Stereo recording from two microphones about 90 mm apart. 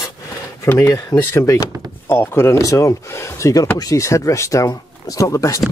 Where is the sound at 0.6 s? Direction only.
30° left (ahead or behind).